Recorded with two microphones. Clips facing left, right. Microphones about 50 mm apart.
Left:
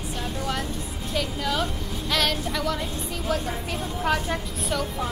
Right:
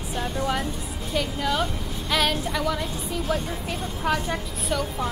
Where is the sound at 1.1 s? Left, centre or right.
Centre.